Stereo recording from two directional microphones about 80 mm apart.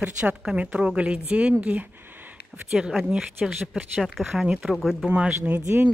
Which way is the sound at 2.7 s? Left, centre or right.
Centre.